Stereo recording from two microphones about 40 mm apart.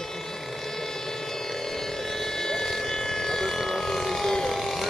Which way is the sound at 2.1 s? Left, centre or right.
Centre.